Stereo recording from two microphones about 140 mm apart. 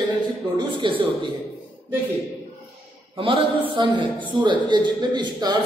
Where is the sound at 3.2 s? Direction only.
35° right (ahead or behind).